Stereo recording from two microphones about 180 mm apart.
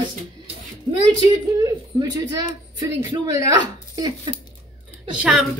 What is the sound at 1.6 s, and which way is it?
Speech, 20° right (ahead or behind).